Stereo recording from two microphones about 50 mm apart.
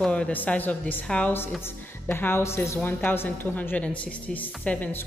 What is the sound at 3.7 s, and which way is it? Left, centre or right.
A woman's voice, left.